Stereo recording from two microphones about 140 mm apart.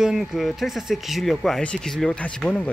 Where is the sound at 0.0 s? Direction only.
5° right (ahead or behind).